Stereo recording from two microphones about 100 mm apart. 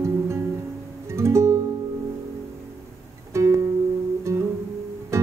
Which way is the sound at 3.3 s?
30° right (ahead or behind).